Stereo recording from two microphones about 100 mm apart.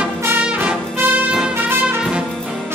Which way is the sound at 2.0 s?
10° right (ahead or behind).